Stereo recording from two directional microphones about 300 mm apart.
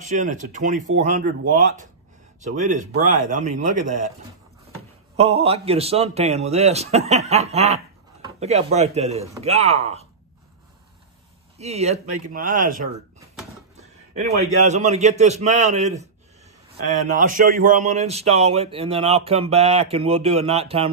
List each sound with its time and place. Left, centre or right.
0.0 s a man's voice: right
5.1 s a man's voice: right
11.5 s a man's voice: right
17.2 s a man's voice: right